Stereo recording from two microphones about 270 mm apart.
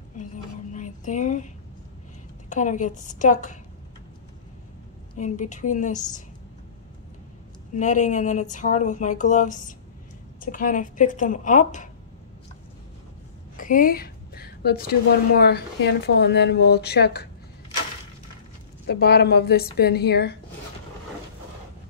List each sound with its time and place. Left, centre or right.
0.7 s speech: left
2.5 s speech: left
5.1 s speech: left
7.7 s speech: left
13.6 s a woman's voice: left
18.9 s a woman's voice: left